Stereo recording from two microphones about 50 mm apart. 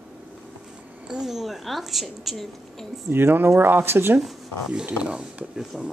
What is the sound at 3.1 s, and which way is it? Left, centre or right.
Speech, right.